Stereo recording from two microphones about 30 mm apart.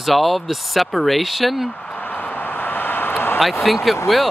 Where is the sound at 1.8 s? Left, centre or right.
Left.